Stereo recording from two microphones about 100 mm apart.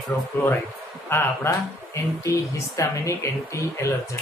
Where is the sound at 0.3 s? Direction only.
20° left (ahead or behind).